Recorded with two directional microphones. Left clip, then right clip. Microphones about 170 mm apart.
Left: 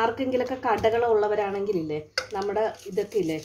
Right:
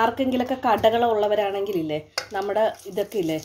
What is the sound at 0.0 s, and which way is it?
A woman's voice, 30° right (ahead or behind).